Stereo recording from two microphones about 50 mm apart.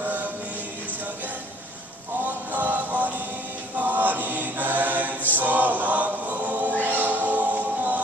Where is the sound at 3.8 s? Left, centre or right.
Right.